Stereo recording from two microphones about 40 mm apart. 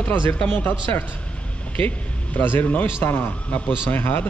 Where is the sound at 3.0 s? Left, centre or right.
Left.